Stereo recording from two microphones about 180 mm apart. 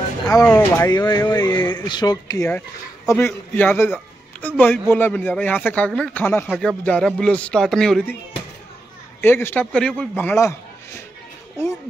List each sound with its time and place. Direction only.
0.3 s a man's voice: 20° left (ahead or behind)
6.8 s music: 5° left (ahead or behind)
9.2 s speech: 10° left (ahead or behind)